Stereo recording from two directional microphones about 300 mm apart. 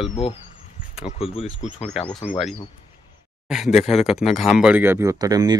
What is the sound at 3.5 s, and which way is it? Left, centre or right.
Speech, centre.